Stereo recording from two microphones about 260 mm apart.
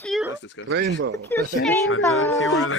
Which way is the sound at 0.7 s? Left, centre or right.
Right.